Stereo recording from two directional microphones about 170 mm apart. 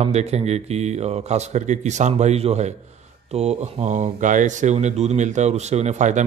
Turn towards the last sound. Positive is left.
turn(degrees=-45)  # may be behind; listen again after turning